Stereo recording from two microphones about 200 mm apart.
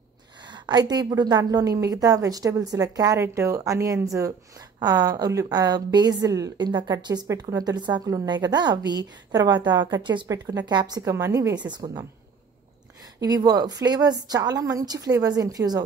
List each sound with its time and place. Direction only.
0.4 s a woman's voice: 20° right (ahead or behind)
13.2 s a woman's voice: 20° right (ahead or behind)